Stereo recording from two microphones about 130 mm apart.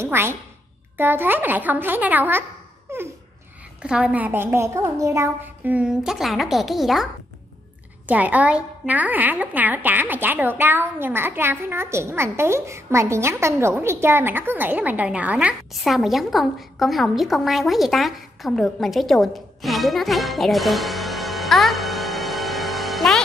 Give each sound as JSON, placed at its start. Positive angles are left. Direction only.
{"t": 0.0, "sound": "a woman's voice", "side_deg": -20}
{"t": 2.9, "sound": "a sound", "side_deg": -20}
{"t": 3.8, "sound": "a woman's voice", "side_deg": -10}
{"t": 8.1, "sound": "a woman's voice", "side_deg": -10}
{"t": 15.7, "sound": "a woman's voice", "side_deg": 0}